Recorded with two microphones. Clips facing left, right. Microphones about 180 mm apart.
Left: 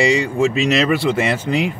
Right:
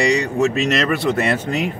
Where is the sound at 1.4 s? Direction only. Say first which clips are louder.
Left 3 dB; 45° right (ahead or behind).